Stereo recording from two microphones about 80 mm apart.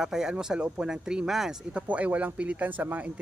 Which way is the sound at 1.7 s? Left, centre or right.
Centre.